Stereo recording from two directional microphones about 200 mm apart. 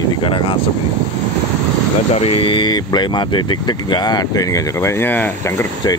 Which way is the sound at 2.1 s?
30° left (ahead or behind).